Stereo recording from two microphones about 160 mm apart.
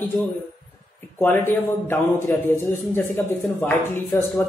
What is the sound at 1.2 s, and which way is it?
Speech, 15° left (ahead or behind).